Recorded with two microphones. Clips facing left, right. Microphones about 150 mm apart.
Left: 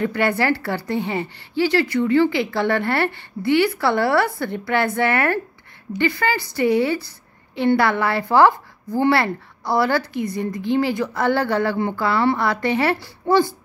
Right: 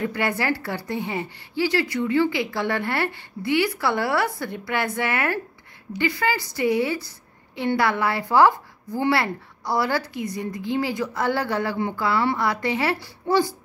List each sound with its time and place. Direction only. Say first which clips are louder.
0.0 s a woman's voice: left 5 dB; 60° left (ahead or behind)